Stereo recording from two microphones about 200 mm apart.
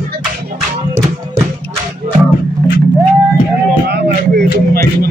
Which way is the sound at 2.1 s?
35° right (ahead or behind).